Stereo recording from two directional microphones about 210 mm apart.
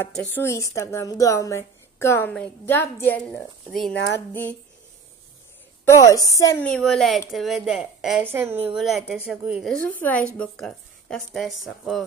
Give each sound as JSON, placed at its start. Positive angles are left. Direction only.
{"t": 0.0, "sound": "speech", "side_deg": 5}
{"t": 5.9, "sound": "speech", "side_deg": 15}
{"t": 6.7, "sound": "a woman's voice", "side_deg": 5}